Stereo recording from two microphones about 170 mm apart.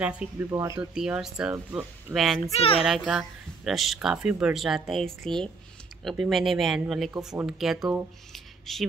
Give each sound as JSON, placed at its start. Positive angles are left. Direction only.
{"t": 0.0, "sound": "speech", "side_deg": -10}
{"t": 0.9, "sound": "speech", "side_deg": -5}
{"t": 2.5, "sound": "a child's voice", "side_deg": 35}
{"t": 2.8, "sound": "speech", "side_deg": -5}